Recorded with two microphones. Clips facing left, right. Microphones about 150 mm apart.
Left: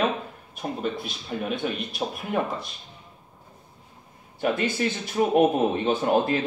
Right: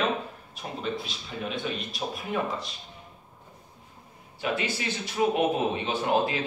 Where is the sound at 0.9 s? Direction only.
55° left (ahead or behind).